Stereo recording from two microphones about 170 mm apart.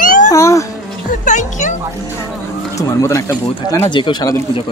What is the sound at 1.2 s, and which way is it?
Music, 45° left (ahead or behind).